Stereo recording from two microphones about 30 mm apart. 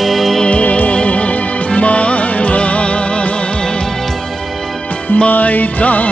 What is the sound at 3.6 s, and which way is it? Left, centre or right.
Music, left.